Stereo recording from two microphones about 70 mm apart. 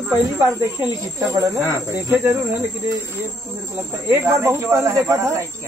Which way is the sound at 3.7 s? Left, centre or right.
Right.